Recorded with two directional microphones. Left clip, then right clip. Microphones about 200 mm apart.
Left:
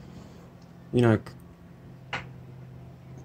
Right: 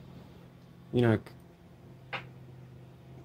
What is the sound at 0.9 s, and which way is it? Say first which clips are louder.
Speech: left 4 dB; centre (ahead or behind).